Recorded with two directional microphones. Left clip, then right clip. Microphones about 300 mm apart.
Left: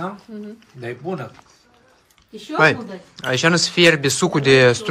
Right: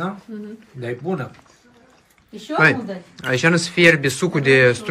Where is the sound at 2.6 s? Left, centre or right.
Centre.